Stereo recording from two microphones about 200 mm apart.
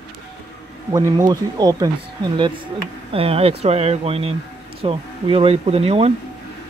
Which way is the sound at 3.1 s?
30° right (ahead or behind).